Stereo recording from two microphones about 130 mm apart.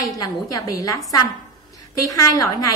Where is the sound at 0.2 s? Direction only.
25° left (ahead or behind).